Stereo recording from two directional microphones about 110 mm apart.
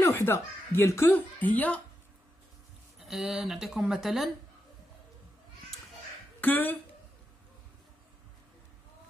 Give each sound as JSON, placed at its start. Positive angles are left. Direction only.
{"t": 0.0, "sound": "speech", "side_deg": 20}
{"t": 3.0, "sound": "speech", "side_deg": 0}
{"t": 6.4, "sound": "speech", "side_deg": 15}